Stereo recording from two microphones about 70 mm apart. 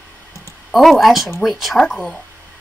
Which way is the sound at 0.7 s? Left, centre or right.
Centre.